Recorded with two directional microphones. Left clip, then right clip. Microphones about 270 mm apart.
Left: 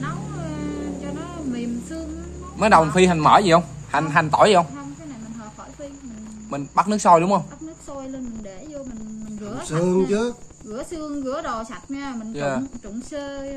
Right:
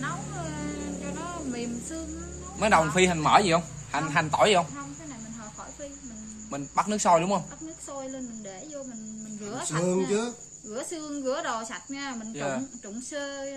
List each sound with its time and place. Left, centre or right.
0.0 s music: centre
2.6 s a man's voice: centre
6.5 s a man's voice: centre
9.5 s speech: centre
12.4 s a man's voice: centre
13.1 s speech: centre